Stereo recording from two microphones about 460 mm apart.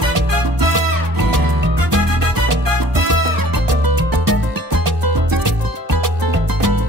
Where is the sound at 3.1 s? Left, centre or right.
Right.